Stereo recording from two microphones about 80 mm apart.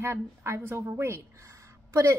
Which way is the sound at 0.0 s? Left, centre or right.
Right.